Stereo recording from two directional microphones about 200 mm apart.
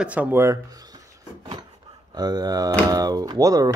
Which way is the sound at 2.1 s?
20° right (ahead or behind).